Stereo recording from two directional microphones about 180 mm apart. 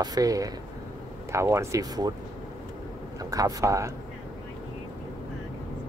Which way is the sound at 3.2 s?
20° right (ahead or behind).